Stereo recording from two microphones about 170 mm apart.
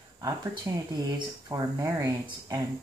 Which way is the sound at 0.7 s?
20° right (ahead or behind).